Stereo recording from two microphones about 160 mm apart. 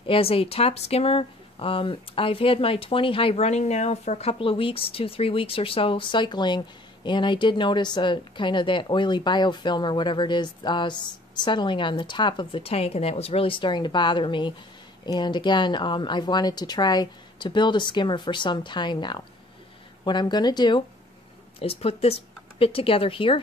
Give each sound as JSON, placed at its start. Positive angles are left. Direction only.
{"t": 0.0, "sound": "a woman's voice", "side_deg": 35}
{"t": 21.5, "sound": "speech", "side_deg": 40}